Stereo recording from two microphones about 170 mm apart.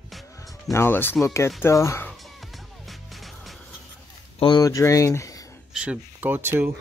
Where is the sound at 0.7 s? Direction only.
15° left (ahead or behind).